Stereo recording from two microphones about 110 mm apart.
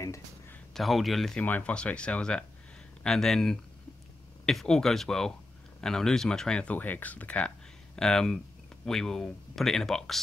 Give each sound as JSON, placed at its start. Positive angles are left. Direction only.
{"t": 0.0, "sound": "a sound", "side_deg": 25}
{"t": 0.7, "sound": "speech", "side_deg": 0}
{"t": 1.4, "sound": "speech", "side_deg": 10}